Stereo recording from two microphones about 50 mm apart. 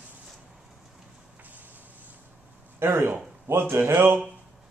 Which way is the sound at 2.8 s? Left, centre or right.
Right.